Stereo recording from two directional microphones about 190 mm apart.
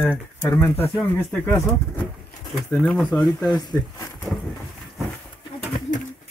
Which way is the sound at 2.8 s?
5° left (ahead or behind).